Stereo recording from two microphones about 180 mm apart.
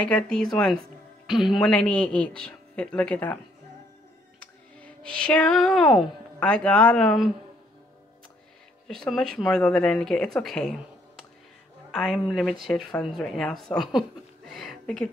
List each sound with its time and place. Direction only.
0.0 s a woman's voice: 5° left (ahead or behind)
4.4 s speech: 5° left (ahead or behind)
8.8 s a woman's voice: centre (ahead or behind)